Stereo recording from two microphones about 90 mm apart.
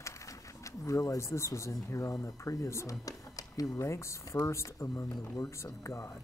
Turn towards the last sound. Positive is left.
turn(degrees=35)  # may be behind; listen again after turning